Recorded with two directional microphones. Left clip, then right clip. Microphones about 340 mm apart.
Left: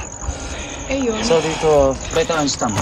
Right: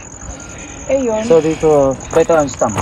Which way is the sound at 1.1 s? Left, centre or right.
Centre.